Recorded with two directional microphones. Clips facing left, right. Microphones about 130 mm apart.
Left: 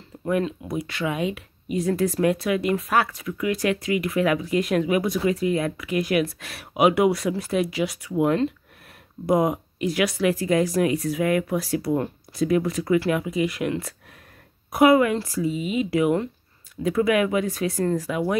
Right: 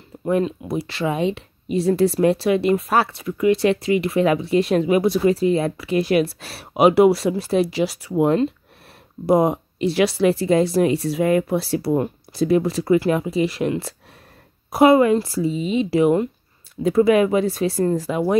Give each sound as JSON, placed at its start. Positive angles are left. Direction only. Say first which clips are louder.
{"t": 0.3, "sound": "speech", "louder": "right 4 dB", "side_deg": -30}